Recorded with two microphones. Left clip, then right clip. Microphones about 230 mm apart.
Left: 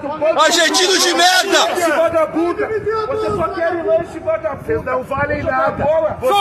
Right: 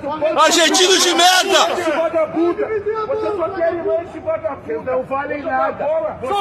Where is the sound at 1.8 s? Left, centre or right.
Left.